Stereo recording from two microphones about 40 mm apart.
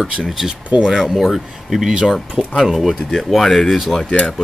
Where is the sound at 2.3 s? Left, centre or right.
Right.